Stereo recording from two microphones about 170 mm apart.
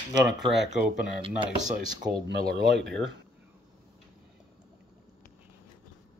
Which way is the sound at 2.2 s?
80° right.